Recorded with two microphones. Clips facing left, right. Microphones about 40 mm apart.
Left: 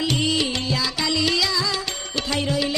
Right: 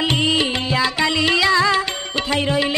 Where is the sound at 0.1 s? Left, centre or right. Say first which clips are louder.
Right 4 dB; right.